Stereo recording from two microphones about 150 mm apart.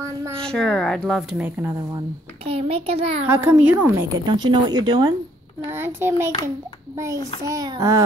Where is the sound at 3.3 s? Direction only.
10° right (ahead or behind).